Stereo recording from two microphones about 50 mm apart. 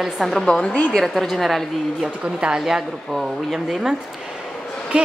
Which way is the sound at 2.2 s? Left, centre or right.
Right.